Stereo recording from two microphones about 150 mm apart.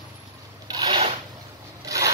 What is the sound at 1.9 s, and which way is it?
Rub, 20° right (ahead or behind).